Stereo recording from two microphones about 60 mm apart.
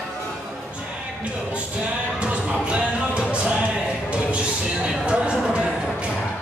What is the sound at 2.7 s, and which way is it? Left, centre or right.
Music, centre.